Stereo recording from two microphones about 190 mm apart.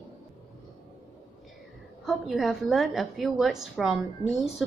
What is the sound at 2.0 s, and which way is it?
A woman's voice, centre (ahead or behind).